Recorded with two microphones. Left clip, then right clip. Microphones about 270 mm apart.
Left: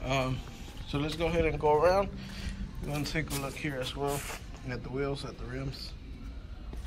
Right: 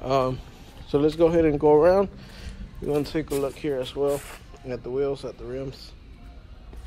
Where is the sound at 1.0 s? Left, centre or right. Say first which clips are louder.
Right 10 dB; right.